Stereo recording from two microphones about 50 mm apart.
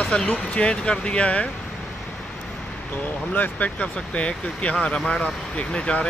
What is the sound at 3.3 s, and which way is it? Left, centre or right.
Speech, left.